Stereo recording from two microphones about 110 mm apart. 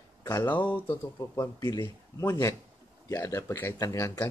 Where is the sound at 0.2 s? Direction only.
35° left (ahead or behind).